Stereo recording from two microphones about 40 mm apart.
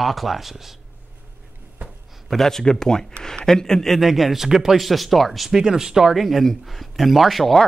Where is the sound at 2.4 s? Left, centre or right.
Centre.